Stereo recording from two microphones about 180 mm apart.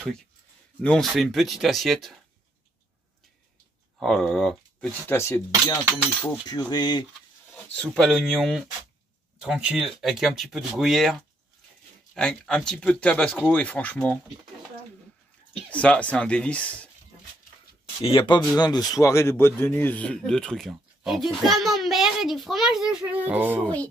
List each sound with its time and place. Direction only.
0.8 s speech: centre (ahead or behind)
4.0 s speech: centre (ahead or behind)
5.0 s speech: 15° left (ahead or behind)
7.5 s speech: 5° left (ahead or behind)
15.7 s speech: 5° left (ahead or behind)
18.0 s speech: 30° left (ahead or behind); by 23.6 s 10° right (ahead or behind)
23.6 s speech: 10° left (ahead or behind)